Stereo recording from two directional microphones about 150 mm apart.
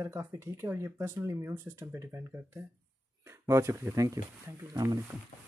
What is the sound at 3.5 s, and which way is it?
Speech, 20° right (ahead or behind).